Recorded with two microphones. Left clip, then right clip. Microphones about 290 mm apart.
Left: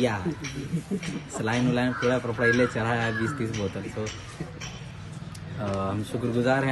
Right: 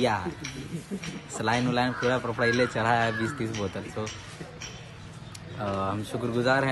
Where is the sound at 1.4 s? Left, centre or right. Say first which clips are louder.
Right 1 dB; centre.